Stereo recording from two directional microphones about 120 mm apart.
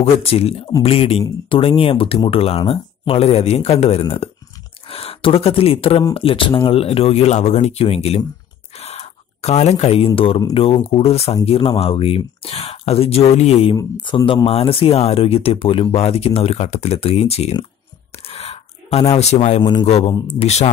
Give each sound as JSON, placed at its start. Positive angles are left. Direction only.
{"t": 0.0, "sound": "speech", "side_deg": 55}
{"t": 8.7, "sound": "a sound", "side_deg": 60}
{"t": 10.5, "sound": "speech", "side_deg": 50}
{"t": 13.7, "sound": "speech", "side_deg": 40}
{"t": 18.1, "sound": "a sound", "side_deg": 55}
{"t": 19.6, "sound": "a man's voice", "side_deg": 40}
{"t": 19.9, "sound": "speech", "side_deg": 55}